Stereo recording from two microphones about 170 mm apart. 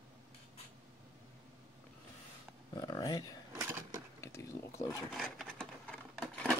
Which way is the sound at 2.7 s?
25° left (ahead or behind).